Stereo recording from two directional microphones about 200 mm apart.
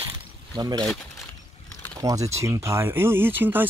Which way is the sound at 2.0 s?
15° right (ahead or behind).